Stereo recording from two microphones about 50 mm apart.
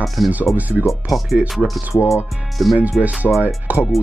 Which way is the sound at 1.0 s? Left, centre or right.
Centre.